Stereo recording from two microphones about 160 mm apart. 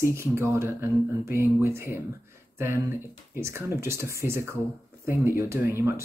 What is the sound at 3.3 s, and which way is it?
Speech, 15° right (ahead or behind).